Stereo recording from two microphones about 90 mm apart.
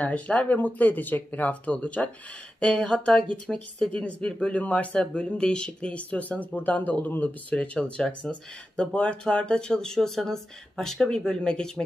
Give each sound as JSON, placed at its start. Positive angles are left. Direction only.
{"t": 0.0, "sound": "speech", "side_deg": 15}